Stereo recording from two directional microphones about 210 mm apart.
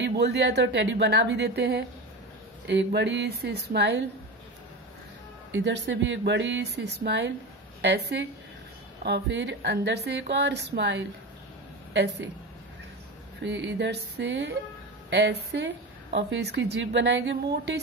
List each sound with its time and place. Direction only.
0.0 s a woman's voice: 55° right (ahead or behind)
5.5 s a woman's voice: 60° right (ahead or behind)
13.4 s a woman's voice: 60° right (ahead or behind)